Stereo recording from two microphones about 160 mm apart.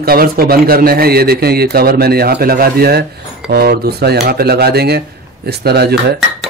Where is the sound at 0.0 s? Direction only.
70° right (ahead or behind); by 6.1 s 90° right.